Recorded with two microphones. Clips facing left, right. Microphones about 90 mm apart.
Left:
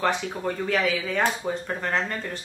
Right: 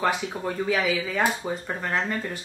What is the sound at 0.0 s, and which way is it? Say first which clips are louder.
Speech: even; 5° right (ahead or behind).